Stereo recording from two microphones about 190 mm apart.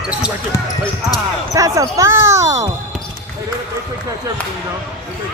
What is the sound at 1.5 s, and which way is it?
Speech, 15° right (ahead or behind).